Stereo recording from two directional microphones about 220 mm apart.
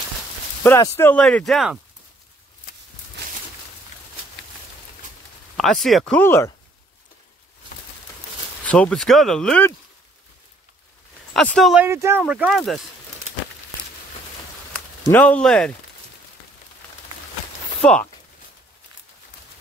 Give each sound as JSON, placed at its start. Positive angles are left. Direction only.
{"t": 0.7, "sound": "speech", "side_deg": 10}
{"t": 5.6, "sound": "speech", "side_deg": 0}
{"t": 8.6, "sound": "speech", "side_deg": 5}
{"t": 11.3, "sound": "speech", "side_deg": 0}
{"t": 15.0, "sound": "speech", "side_deg": 5}
{"t": 17.8, "sound": "speech", "side_deg": 5}